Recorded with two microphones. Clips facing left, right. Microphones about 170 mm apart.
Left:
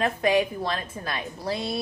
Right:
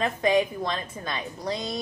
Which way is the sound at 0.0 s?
5° left (ahead or behind).